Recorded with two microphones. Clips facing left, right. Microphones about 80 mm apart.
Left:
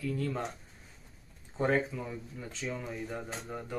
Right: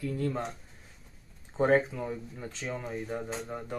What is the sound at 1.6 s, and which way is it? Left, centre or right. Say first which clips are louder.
Speech: right 5 dB; right.